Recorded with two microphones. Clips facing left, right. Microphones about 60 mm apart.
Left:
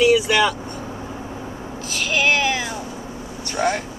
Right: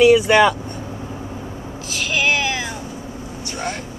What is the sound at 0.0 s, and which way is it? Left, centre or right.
Speech, right.